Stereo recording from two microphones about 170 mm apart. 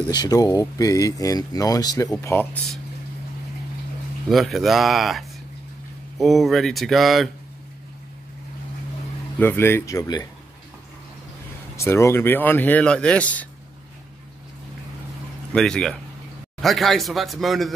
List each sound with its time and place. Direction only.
0.1 s speech: 20° left (ahead or behind)
4.3 s speech: centre (ahead or behind)
9.4 s speech: 10° left (ahead or behind)
11.7 s speech: 15° left (ahead or behind)
15.5 s speech: 5° left (ahead or behind)